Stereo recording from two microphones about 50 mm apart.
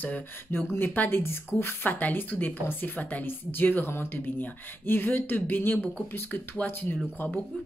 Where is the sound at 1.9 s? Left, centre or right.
Left.